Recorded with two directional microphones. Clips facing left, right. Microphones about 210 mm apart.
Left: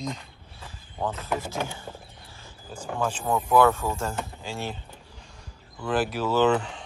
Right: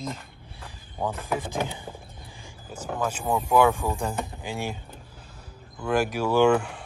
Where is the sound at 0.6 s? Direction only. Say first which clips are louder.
Even; 15° right (ahead or behind).